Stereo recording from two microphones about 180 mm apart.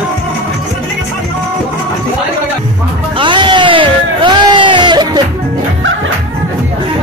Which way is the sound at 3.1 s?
25° right (ahead or behind).